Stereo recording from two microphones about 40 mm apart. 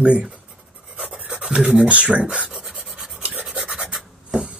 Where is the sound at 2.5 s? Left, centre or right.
Centre.